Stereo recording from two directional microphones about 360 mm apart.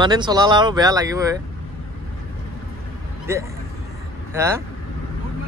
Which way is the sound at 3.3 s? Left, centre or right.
Centre.